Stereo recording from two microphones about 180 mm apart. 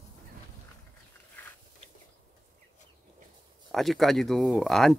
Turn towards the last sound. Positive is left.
turn(degrees=0)  # may be behind; listen again after turning